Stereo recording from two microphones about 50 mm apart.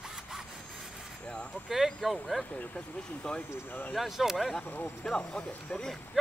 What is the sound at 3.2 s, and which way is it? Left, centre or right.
Speech, centre.